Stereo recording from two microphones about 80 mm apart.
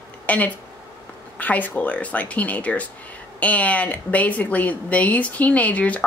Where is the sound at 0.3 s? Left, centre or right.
Centre.